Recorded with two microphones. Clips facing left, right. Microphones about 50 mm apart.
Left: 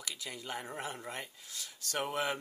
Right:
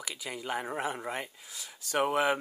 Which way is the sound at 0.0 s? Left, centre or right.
Centre.